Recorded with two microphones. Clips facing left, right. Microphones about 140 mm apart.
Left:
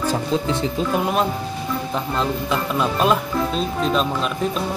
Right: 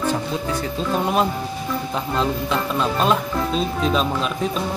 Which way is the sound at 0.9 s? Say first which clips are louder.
Right 2 dB; centre (ahead or behind).